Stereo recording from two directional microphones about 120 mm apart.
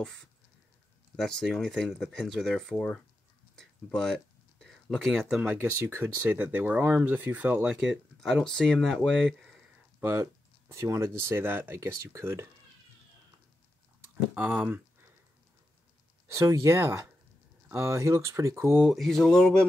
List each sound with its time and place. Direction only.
0.0 s speech: 5° left (ahead or behind)
3.5 s a sound: 5° left (ahead or behind)
5.5 s speech: 15° right (ahead or behind)
9.9 s speech: 20° right (ahead or behind)
14.3 s speech: 15° right (ahead or behind)
16.3 s speech: 25° right (ahead or behind)
18.9 s speech: centre (ahead or behind)